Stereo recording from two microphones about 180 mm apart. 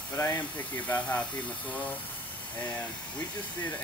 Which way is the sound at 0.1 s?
20° left (ahead or behind).